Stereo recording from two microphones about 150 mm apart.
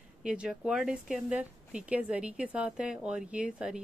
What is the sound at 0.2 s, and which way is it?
A woman's voice, 5° right (ahead or behind).